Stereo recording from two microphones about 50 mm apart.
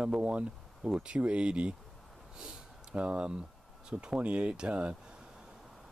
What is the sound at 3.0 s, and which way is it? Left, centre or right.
Speech, centre.